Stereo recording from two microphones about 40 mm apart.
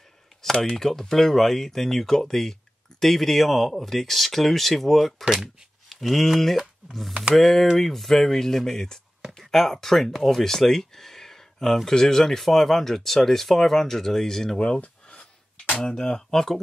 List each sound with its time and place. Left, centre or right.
0.4 s speech: centre
5.2 s speech: centre
5.9 s speech: centre
7.3 s speech: centre
14.8 s a sound: left
15.8 s speech: centre